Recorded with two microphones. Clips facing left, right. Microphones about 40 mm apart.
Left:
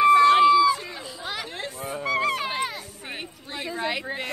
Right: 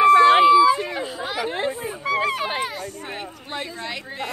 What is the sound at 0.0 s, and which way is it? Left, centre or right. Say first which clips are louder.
Run: right 3 dB; centre.